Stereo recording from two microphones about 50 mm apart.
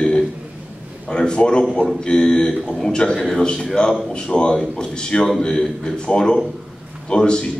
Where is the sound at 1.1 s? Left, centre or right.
Centre.